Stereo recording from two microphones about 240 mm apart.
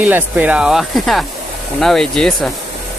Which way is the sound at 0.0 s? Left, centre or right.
Centre.